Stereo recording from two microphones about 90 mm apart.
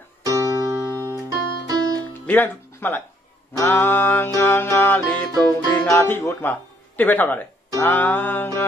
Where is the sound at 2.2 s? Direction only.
20° left (ahead or behind).